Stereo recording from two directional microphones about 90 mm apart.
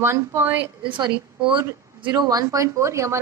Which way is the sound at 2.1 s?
45° right (ahead or behind).